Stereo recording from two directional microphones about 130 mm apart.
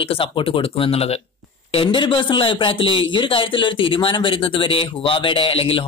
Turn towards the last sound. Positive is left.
turn(degrees=45)  # may be behind; listen again after turning